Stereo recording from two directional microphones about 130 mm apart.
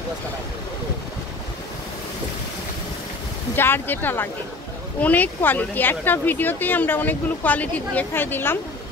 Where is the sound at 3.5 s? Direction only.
15° left (ahead or behind).